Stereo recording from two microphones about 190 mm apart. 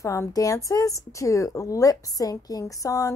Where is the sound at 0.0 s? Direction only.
15° left (ahead or behind).